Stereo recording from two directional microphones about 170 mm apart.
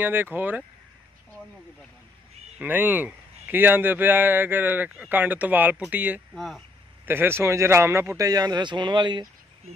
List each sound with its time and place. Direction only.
0.0 s speech: 10° right (ahead or behind)
2.6 s speech: 10° right (ahead or behind)
6.3 s speech: centre (ahead or behind)
7.1 s speech: 15° right (ahead or behind)